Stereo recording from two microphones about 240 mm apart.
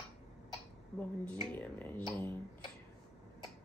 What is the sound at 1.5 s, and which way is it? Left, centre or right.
Speech, centre.